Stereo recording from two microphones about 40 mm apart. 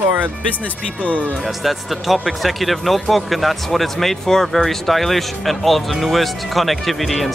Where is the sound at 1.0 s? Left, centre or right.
Left.